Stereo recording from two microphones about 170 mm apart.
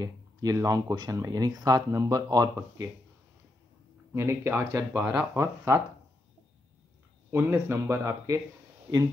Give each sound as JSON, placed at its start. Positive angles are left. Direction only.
{"t": 0.0, "sound": "speech", "side_deg": -20}
{"t": 4.1, "sound": "speech", "side_deg": -15}
{"t": 7.2, "sound": "speech", "side_deg": -10}